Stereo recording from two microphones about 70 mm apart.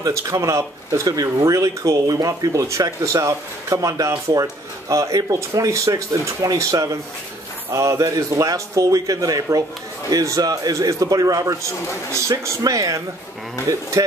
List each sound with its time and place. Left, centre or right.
0.0 s a man's voice: right
12.1 s speech: right